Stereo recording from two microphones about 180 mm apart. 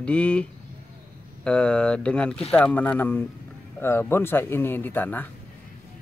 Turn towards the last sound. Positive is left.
turn(degrees=10)  # may be behind; listen again after turning